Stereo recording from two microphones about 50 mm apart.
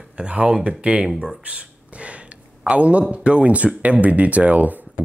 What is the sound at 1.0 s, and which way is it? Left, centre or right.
Speech, centre.